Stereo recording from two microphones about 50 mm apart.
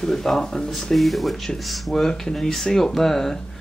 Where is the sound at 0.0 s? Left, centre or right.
Centre.